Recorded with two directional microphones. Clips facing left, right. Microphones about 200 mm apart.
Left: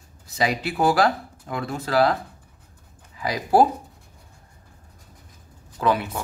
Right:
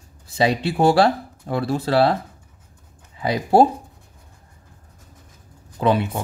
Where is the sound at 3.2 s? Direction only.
25° right (ahead or behind).